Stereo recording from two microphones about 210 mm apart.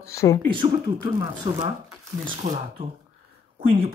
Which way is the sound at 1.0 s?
20° right (ahead or behind).